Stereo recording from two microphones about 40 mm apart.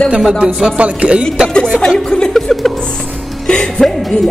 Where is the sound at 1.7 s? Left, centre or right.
Centre.